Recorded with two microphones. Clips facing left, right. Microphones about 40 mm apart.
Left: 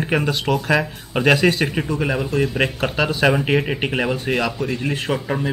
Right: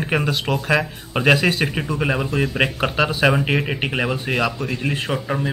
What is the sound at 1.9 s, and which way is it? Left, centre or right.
Speech, centre.